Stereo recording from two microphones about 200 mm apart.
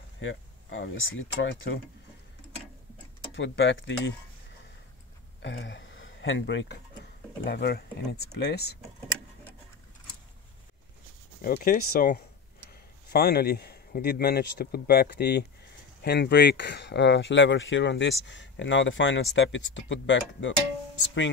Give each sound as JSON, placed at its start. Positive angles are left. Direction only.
{"t": 0.2, "sound": "speech", "side_deg": 70}
{"t": 3.3, "sound": "speech", "side_deg": 65}
{"t": 5.4, "sound": "speech", "side_deg": 65}
{"t": 7.4, "sound": "speech", "side_deg": 50}
{"t": 11.4, "sound": "speech", "side_deg": 45}